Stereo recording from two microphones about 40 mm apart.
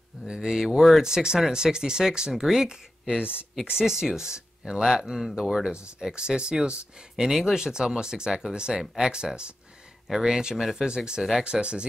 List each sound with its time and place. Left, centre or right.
0.3 s speech: centre
0.7 s speech: centre
1.0 s speech: centre
10.0 s speech: centre
10.8 s speech: centre